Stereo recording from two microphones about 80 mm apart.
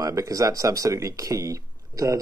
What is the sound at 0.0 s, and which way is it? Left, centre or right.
Speech, right.